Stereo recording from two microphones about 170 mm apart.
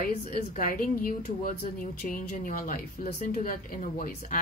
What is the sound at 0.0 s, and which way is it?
Speech, 50° left (ahead or behind).